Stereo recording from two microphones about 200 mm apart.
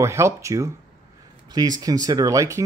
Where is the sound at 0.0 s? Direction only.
15° right (ahead or behind).